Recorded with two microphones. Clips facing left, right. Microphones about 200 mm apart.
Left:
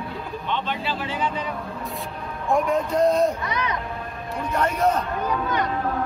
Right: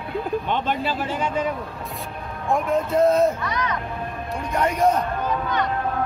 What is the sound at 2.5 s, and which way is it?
Speech, centre (ahead or behind).